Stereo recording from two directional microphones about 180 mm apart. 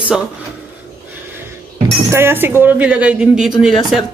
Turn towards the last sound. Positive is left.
turn(degrees=-5)  # may be behind; listen again after turning